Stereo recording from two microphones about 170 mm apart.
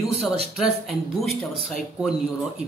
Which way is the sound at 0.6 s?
Centre (ahead or behind).